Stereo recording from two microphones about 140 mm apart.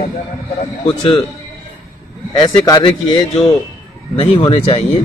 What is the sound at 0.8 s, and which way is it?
Speech, 40° left (ahead or behind).